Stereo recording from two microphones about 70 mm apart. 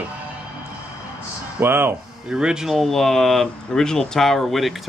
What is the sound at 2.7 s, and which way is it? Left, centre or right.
Speech, centre.